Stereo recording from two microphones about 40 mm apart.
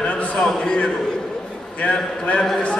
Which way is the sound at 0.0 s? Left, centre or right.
Left.